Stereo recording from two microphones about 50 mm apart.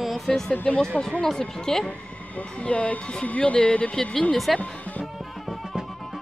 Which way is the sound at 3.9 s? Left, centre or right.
Centre.